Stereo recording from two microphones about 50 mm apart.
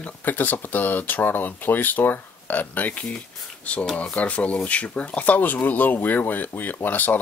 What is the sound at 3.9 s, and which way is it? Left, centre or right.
Speech, left.